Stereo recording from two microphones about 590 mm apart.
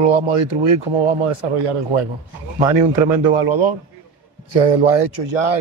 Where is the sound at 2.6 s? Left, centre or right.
Right.